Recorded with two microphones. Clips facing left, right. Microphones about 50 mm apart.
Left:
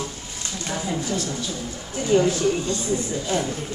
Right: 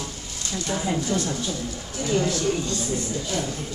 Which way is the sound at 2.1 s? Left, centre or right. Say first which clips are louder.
Left 4 dB; left.